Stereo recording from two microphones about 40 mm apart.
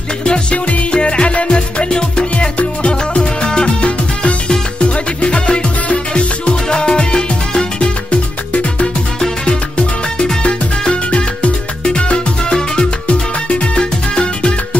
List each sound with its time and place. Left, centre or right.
0.2 s music: left
13.7 s music: left